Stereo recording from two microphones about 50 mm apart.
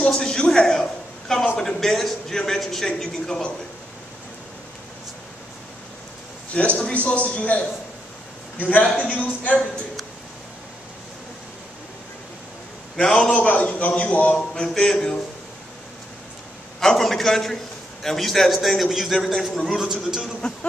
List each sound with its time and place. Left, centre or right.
0.0 s a man's voice: centre
6.5 s a man's voice: left
12.9 s a man's voice: centre
13.3 s a man's voice: left
14.5 s a man's voice: centre
16.8 s a man's voice: centre